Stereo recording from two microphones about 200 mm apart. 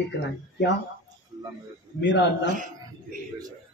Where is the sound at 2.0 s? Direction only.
60° left (ahead or behind).